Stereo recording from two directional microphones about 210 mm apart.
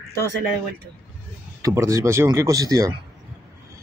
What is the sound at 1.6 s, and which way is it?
Speech, 15° right (ahead or behind).